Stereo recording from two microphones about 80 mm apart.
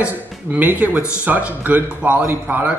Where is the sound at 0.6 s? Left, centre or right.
Right.